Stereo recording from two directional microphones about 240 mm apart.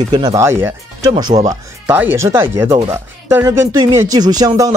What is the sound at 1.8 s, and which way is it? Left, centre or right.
Speech, centre.